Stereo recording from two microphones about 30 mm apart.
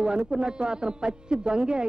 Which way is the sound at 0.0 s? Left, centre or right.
Right.